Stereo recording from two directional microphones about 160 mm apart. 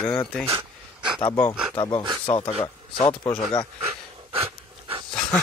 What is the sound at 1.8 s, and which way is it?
Speech, 25° left (ahead or behind).